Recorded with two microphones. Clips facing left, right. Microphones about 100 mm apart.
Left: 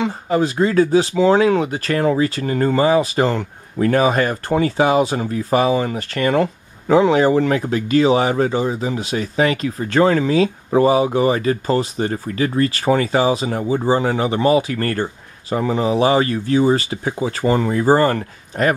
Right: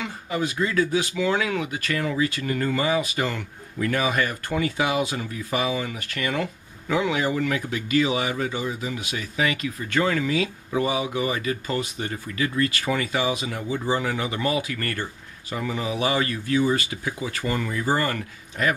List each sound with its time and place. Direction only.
0.0 s speech: 35° left (ahead or behind)